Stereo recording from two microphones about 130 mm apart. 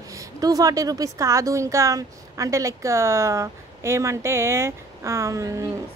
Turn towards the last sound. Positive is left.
turn(degrees=-25)  # may be behind; listen again after turning